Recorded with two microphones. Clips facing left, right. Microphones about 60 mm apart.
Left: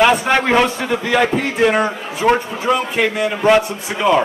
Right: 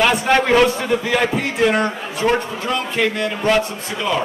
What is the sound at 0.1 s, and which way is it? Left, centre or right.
A man's voice, centre.